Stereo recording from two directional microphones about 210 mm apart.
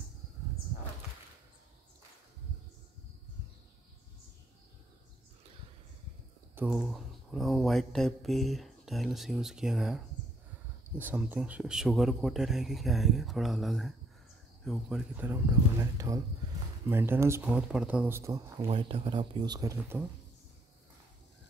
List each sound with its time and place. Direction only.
6.5 s speech: 5° right (ahead or behind)
18.7 s speech: 25° right (ahead or behind)